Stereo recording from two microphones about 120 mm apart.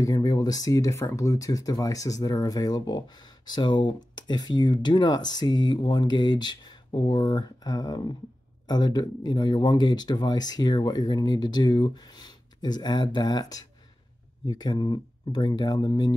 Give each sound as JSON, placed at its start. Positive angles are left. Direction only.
{"t": 0.0, "sound": "speech", "side_deg": 30}